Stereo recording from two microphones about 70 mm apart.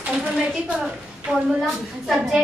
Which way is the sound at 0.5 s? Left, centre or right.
Centre.